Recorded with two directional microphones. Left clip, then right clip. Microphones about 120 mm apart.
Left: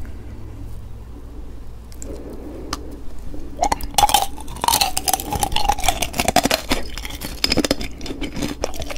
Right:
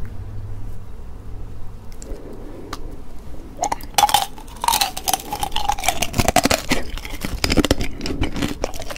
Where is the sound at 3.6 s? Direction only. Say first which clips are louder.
Left 1 dB; 10° left (ahead or behind).